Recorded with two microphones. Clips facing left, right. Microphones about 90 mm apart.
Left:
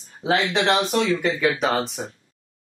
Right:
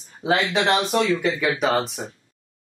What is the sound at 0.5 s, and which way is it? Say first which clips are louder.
Speech: even; centre (ahead or behind).